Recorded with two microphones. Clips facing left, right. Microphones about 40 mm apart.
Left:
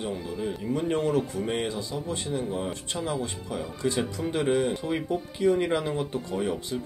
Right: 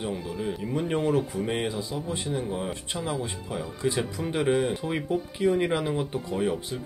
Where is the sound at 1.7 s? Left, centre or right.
Right.